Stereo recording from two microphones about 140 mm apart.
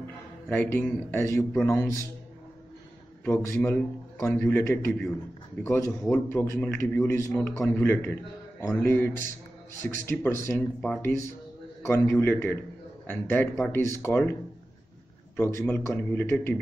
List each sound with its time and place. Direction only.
0.5 s a man's voice: 10° left (ahead or behind)
3.6 s a man's voice: 15° left (ahead or behind)
15.3 s a man's voice: 15° left (ahead or behind)